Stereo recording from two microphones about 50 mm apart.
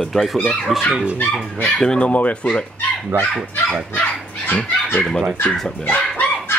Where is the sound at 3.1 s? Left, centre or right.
Right.